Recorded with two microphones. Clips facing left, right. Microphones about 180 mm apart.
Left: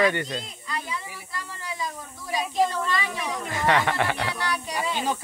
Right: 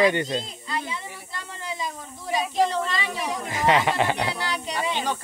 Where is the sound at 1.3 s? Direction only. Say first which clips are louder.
Right 1 dB; 25° right (ahead or behind).